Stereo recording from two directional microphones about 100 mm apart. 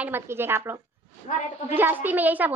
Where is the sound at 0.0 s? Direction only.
20° right (ahead or behind).